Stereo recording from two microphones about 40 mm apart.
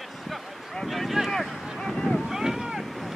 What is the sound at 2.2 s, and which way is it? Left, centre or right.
Boat, centre.